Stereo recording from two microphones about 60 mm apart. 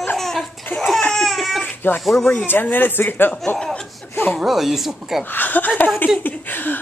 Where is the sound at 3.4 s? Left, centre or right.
Centre.